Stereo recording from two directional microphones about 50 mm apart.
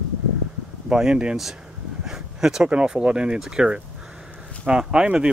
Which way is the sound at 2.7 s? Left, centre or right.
Centre.